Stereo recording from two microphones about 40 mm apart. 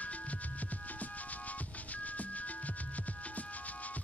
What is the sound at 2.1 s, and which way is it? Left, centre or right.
Music, left.